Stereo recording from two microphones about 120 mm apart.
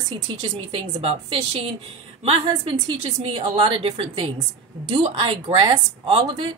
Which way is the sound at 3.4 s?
45° right (ahead or behind).